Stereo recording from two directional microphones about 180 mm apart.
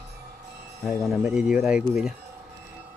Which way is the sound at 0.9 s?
5° right (ahead or behind).